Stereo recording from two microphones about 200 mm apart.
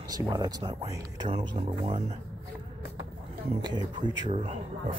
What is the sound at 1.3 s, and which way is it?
Speech, 30° right (ahead or behind).